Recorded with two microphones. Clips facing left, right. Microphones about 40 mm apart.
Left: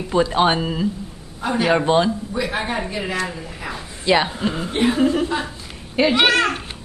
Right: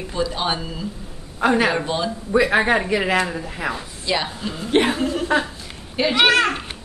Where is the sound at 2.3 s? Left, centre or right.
Right.